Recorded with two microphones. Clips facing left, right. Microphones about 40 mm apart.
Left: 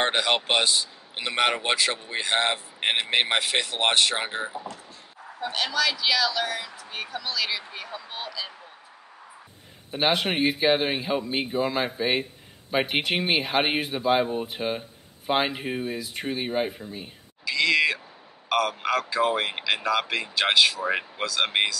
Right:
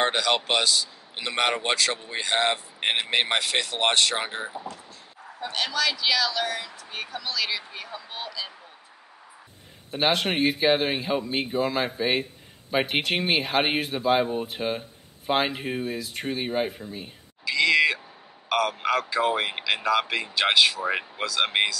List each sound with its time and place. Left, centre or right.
0.1 s a man's voice: left
1.2 s speech: centre
9.8 s speech: centre